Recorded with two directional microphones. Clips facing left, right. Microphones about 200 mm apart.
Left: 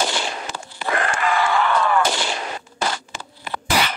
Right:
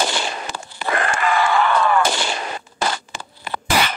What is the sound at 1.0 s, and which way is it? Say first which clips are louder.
Artillery fire: right 2 dB; 55° right (ahead or behind).